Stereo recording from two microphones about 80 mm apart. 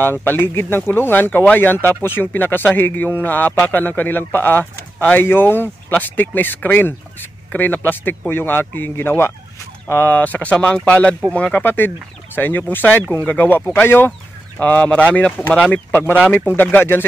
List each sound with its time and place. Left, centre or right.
0.2 s speech: left